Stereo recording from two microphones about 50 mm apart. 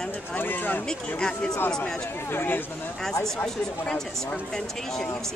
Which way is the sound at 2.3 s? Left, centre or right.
Left.